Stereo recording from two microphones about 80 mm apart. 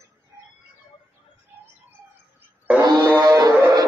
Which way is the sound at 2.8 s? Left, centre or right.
Right.